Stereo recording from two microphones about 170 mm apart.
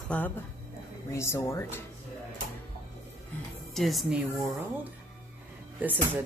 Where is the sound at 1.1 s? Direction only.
15° left (ahead or behind).